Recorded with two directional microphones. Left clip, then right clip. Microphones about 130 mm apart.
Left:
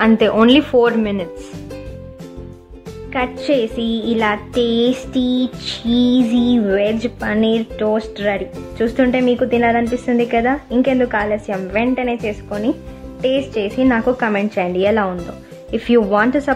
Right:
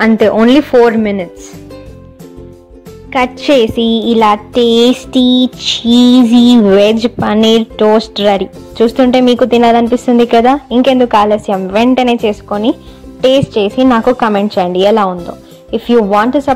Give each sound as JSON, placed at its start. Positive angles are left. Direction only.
{"t": 0.0, "sound": "a woman's voice", "side_deg": -30}
{"t": 3.1, "sound": "a woman's voice", "side_deg": -40}
{"t": 14.3, "sound": "speech", "side_deg": -30}
{"t": 15.7, "sound": "speech", "side_deg": -20}